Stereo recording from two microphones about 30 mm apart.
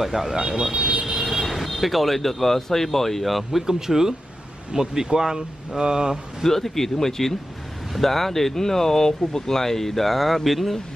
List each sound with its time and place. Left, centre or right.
0.0 s speech: centre
0.4 s speech: right
1.2 s speech: centre
3.6 s speech: centre
6.4 s speech: centre